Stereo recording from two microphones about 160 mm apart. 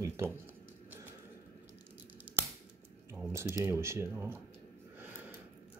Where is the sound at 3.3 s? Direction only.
15° right (ahead or behind).